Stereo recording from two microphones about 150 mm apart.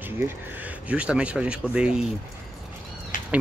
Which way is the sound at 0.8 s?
5° right (ahead or behind).